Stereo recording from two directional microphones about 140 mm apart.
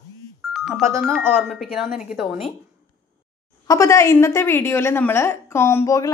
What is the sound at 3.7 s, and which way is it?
A woman's voice, 20° left (ahead or behind).